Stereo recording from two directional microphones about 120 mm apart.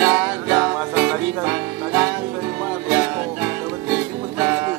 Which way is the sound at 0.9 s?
15° right (ahead or behind).